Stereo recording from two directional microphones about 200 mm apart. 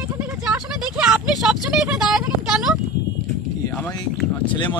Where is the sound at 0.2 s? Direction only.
5° right (ahead or behind).